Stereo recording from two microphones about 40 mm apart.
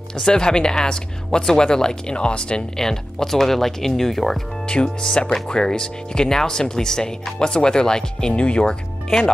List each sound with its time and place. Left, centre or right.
0.1 s speech: centre
2.7 s speech: centre
4.6 s speech: left